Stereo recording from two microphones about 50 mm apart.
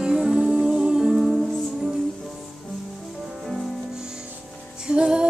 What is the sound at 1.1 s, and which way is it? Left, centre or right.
Music, centre.